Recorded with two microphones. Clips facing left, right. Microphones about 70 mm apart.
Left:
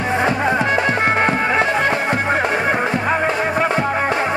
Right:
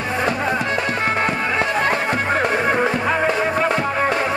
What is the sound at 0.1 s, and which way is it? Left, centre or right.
Music, left.